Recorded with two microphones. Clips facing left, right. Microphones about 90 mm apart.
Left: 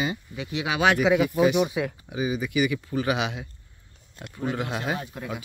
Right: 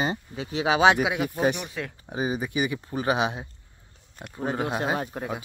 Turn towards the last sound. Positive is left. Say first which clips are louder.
# right 2 dB
turn(degrees=-35)  # may be behind; listen again after turning